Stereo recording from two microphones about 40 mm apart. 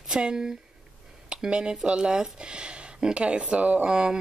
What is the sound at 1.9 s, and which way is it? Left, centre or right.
Speech, centre.